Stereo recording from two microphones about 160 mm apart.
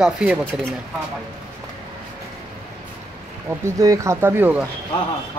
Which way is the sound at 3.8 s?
20° right (ahead or behind).